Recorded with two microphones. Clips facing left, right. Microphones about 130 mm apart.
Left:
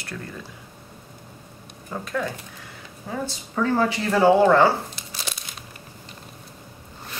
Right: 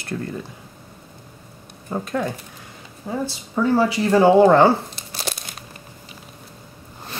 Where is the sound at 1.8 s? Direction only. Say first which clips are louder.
Right 4 dB; 25° right (ahead or behind).